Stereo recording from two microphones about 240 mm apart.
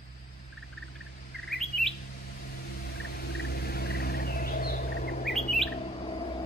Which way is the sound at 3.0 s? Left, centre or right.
Left.